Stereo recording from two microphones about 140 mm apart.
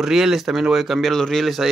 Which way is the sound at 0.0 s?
5° right (ahead or behind).